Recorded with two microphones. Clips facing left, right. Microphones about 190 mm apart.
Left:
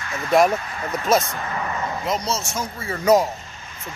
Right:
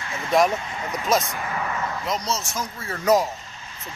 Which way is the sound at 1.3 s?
10° right (ahead or behind).